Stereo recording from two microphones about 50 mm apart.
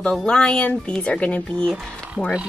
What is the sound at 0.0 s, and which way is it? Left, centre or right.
A woman's voice, centre.